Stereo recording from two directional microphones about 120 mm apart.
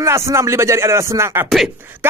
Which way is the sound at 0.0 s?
25° right (ahead or behind).